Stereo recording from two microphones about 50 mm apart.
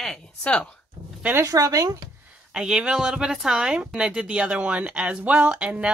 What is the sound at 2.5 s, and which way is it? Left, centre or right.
Speech, centre.